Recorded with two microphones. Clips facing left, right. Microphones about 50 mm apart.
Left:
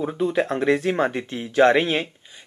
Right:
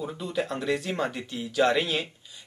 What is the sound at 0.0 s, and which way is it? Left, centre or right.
Speech, left.